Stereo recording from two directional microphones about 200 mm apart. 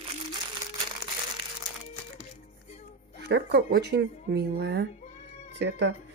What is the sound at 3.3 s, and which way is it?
Speech, 55° right (ahead or behind).